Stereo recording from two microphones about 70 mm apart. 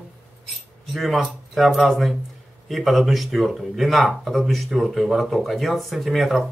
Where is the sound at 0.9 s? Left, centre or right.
Centre.